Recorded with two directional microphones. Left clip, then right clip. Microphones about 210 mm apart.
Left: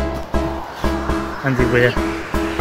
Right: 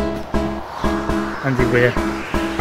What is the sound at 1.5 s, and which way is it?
Speech, centre (ahead or behind).